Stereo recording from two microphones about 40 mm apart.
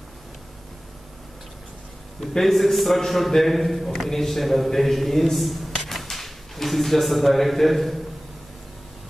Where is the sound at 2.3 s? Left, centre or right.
Centre.